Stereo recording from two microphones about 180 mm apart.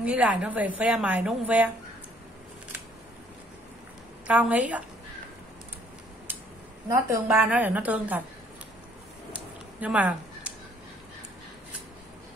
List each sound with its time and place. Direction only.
0.0 s a woman's voice: 5° right (ahead or behind)
4.3 s a woman's voice: 10° right (ahead or behind)
6.9 s a woman's voice: 15° right (ahead or behind)
9.3 s a sound: 10° right (ahead or behind)